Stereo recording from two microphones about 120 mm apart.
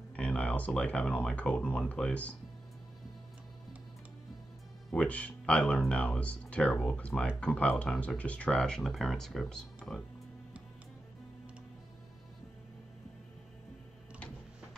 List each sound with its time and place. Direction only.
0.1 s speech: 10° left (ahead or behind)
4.9 s speech: 10° left (ahead or behind)